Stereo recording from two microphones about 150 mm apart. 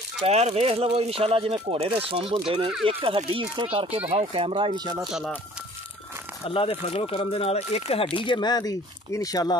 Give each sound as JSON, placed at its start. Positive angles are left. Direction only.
{"t": 0.3, "sound": "speech", "side_deg": -45}
{"t": 6.4, "sound": "speech", "side_deg": 40}